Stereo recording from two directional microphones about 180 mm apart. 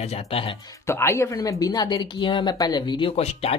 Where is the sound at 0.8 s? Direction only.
15° left (ahead or behind).